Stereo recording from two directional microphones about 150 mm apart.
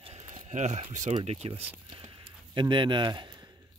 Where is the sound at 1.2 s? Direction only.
45° right (ahead or behind).